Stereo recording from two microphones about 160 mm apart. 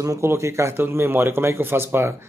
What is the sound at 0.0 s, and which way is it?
A man's voice, 20° right (ahead or behind).